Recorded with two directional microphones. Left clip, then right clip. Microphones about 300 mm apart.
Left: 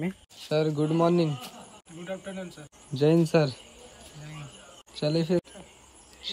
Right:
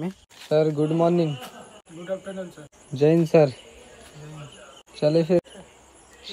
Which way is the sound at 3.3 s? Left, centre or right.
Centre.